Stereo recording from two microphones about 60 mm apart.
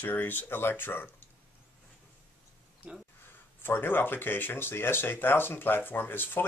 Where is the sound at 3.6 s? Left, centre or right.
Left.